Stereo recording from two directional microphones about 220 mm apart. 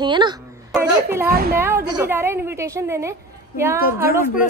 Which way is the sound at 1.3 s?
45° right (ahead or behind).